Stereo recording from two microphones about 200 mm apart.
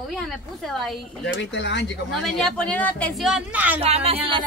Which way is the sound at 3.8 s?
30° right (ahead or behind).